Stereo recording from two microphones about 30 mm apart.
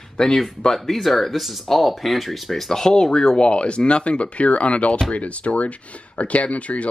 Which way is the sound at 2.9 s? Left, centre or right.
Left.